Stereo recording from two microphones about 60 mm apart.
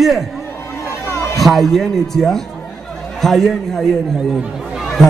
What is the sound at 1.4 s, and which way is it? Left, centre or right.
A man's voice, centre.